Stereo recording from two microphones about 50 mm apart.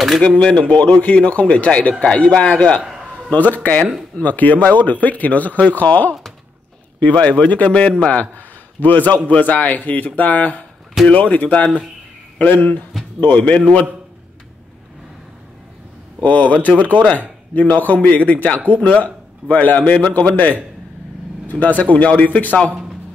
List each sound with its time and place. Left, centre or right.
0.4 s a man's voice: centre
16.2 s a man's voice: left